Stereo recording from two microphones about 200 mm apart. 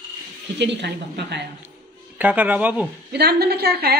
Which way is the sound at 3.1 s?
55° right (ahead or behind).